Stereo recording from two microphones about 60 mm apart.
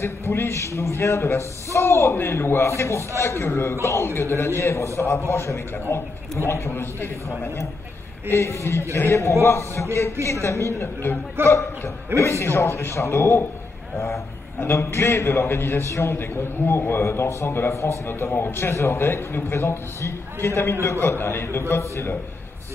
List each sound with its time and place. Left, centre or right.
0.0 s a man's voice: left
6.7 s a man's voice: left
8.3 s a man's voice: left
13.9 s a man's voice: left
14.6 s a man's voice: left